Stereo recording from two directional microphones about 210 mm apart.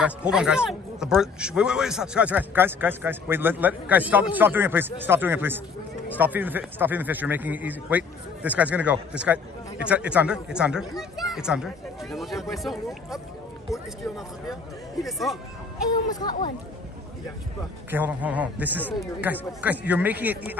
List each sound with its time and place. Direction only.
0.0 s speech: 5° right (ahead or behind)
15.0 s speech: centre (ahead or behind)
15.9 s speech: 20° left (ahead or behind)
17.9 s speech: 5° right (ahead or behind)